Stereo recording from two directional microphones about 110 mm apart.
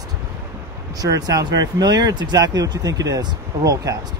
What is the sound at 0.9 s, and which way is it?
Speech, 35° right (ahead or behind).